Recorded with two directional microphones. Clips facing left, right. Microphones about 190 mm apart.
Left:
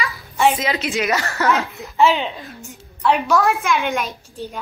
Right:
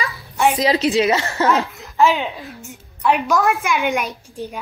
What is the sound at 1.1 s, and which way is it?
Speech, 15° right (ahead or behind).